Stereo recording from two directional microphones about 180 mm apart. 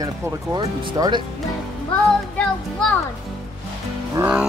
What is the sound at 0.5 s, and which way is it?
Speech, 25° right (ahead or behind).